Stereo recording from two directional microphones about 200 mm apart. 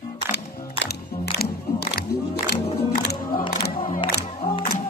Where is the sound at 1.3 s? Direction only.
55° left (ahead or behind).